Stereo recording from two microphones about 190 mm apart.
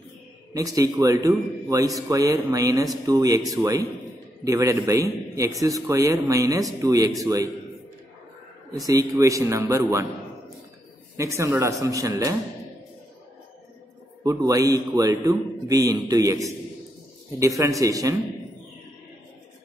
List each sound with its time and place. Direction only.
0.5 s a man's voice: 15° right (ahead or behind)
8.8 s a man's voice: 15° right (ahead or behind)
11.1 s a man's voice: 15° right (ahead or behind)
14.2 s a man's voice: 20° right (ahead or behind)